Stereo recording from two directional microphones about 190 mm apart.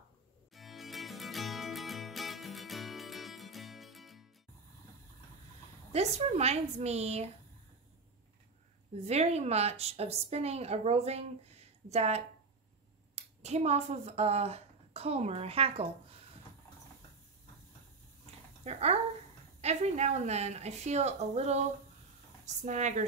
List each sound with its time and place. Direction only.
0.6 s music: centre (ahead or behind)
5.9 s speech: 35° right (ahead or behind)
8.9 s speech: 35° right (ahead or behind)
18.6 s speech: 35° right (ahead or behind)
22.7 s speech: 40° right (ahead or behind)